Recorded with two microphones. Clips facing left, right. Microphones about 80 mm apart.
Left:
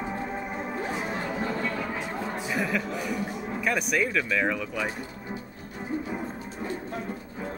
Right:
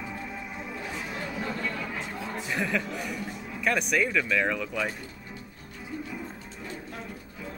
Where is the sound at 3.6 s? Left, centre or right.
Centre.